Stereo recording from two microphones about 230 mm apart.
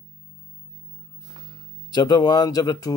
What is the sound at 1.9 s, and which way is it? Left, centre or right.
Speech, centre.